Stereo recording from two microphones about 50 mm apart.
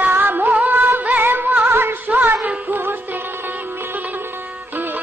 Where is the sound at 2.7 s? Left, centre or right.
Right.